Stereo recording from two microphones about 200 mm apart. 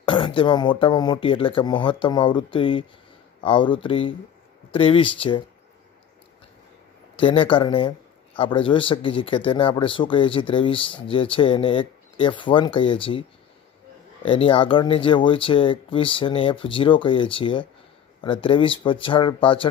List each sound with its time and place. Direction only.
0.0 s speech: 25° left (ahead or behind)
7.2 s speech: 25° left (ahead or behind)
14.2 s speech: 25° left (ahead or behind)